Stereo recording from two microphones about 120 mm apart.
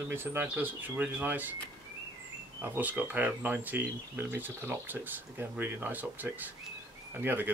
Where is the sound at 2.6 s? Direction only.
15° right (ahead or behind).